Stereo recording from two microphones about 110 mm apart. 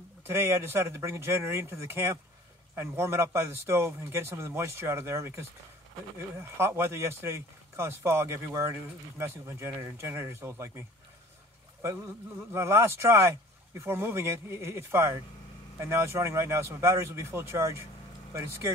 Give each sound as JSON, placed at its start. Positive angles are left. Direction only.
{"t": 0.3, "sound": "speech", "side_deg": -25}
{"t": 12.4, "sound": "speech", "side_deg": -20}